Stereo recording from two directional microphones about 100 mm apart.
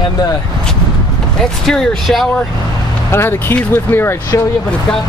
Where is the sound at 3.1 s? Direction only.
25° left (ahead or behind).